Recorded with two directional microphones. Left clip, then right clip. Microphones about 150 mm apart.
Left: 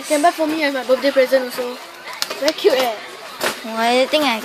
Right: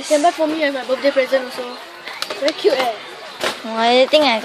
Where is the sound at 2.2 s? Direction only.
40° left (ahead or behind).